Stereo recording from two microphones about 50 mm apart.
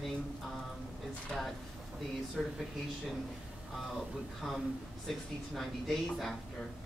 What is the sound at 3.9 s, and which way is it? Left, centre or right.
Speech, centre.